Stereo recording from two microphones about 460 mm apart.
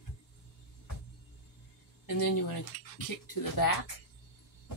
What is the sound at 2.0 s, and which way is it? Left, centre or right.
Speech, left.